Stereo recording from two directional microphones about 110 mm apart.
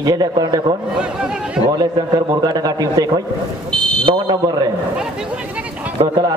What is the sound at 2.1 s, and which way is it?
A man's voice, 40° right (ahead or behind).